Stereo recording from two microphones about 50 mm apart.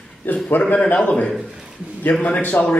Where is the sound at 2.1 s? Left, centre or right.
Left.